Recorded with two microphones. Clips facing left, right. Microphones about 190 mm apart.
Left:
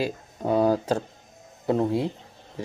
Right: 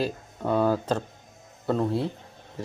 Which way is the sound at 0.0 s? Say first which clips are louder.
Left 1 dB; 10° left (ahead or behind).